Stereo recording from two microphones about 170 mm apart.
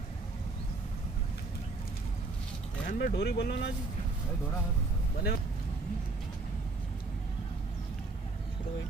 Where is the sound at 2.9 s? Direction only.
60° left (ahead or behind).